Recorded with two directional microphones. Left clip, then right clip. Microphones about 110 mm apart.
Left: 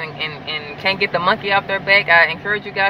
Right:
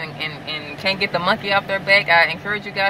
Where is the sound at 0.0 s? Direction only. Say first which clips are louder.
Left 2 dB; 20° right (ahead or behind).